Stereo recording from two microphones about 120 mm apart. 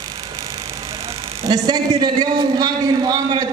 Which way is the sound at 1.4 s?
35° right (ahead or behind).